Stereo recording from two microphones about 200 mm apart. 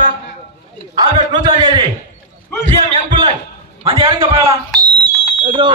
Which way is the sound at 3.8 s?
25° right (ahead or behind).